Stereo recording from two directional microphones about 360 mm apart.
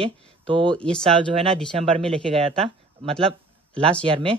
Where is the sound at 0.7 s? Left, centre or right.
Centre.